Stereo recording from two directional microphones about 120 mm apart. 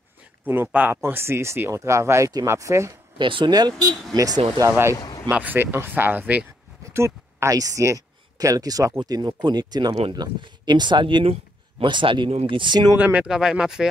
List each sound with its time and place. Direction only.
0.7 s speech: 15° right (ahead or behind)
3.2 s speech: 45° right (ahead or behind)
4.6 s speech: 20° right (ahead or behind)
4.9 s a sound: 30° left (ahead or behind)
5.3 s speech: 15° right (ahead or behind); by 12.9 s 40° right (ahead or behind)
12.9 s speech: 15° right (ahead or behind)